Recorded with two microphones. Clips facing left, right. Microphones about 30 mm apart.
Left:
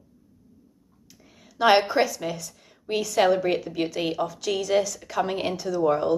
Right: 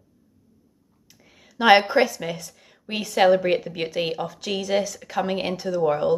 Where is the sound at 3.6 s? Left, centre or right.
Right.